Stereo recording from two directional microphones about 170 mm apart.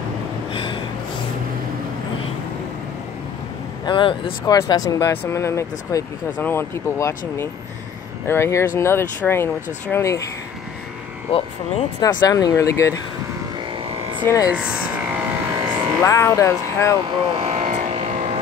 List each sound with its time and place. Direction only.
0.5 s gasp: 30° left (ahead or behind)
3.8 s speech: 30° left (ahead or behind)
11.3 s speech: 35° left (ahead or behind)
12.0 s speech: 25° left (ahead or behind)
14.2 s speech: 20° left (ahead or behind)
14.5 s a sound: 5° right (ahead or behind)
16.0 s speech: 15° left (ahead or behind)
17.4 s a sound: 40° right (ahead or behind)